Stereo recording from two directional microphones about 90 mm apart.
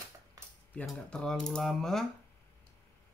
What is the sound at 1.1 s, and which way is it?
Mechanisms, 10° left (ahead or behind).